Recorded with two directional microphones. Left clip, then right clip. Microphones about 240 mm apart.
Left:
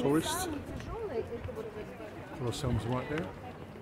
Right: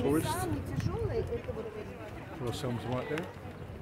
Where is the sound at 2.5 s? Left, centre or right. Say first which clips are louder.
Even; centre.